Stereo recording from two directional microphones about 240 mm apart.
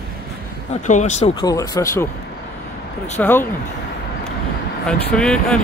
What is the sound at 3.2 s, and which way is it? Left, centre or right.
Speech, centre.